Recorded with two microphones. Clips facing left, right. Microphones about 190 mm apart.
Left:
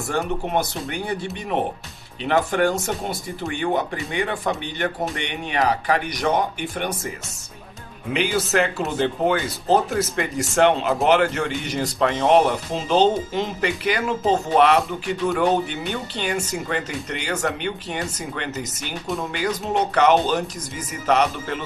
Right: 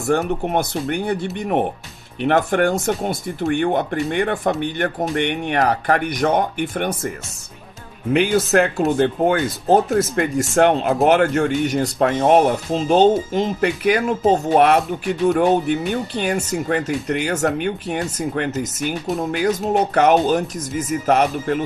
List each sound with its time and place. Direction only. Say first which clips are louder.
0.1 s speech: right 5 dB; 50° right (ahead or behind)
8.1 s speech: right 6 dB; 50° right (ahead or behind)
15.9 s speech: right 5 dB; 50° right (ahead or behind)